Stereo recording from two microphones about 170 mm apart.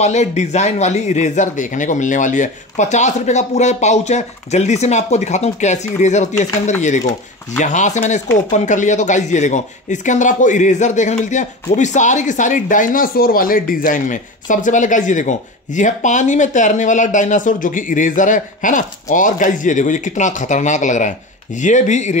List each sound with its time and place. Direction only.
0.0 s speech: 40° left (ahead or behind)